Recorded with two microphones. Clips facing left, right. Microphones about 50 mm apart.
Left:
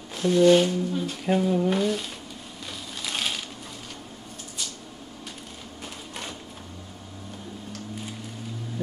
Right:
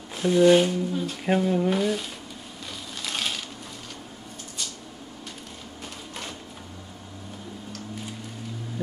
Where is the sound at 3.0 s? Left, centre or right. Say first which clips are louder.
Even; centre.